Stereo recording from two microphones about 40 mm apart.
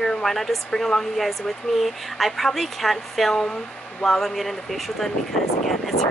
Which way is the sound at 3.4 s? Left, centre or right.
Left.